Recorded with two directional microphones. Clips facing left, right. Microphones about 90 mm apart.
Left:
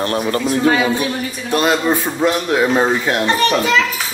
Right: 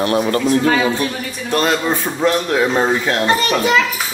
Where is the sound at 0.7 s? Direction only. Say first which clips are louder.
Left 1 dB; 5° left (ahead or behind).